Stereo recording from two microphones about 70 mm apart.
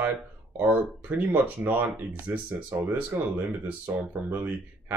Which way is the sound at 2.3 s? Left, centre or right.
Right.